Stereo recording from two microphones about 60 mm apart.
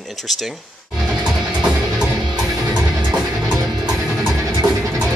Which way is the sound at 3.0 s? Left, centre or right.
Centre.